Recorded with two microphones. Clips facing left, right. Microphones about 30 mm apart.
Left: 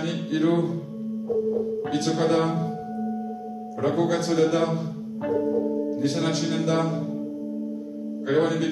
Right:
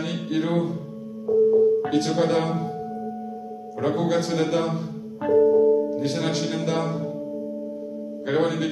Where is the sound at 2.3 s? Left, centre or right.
Centre.